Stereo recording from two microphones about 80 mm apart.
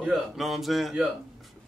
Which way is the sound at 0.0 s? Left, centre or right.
Centre.